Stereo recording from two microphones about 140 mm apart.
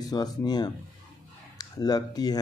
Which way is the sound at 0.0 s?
30° left (ahead or behind).